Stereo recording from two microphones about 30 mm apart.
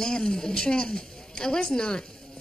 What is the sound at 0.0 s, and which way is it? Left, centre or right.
A woman's voice, left.